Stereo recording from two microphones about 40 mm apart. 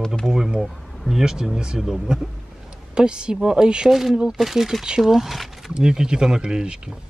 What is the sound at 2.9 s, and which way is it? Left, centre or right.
Speech, right.